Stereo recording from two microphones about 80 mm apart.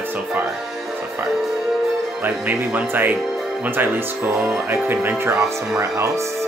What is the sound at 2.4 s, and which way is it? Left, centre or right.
Speech, right.